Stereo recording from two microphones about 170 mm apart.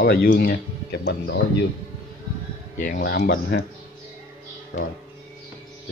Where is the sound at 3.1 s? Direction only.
65° left (ahead or behind).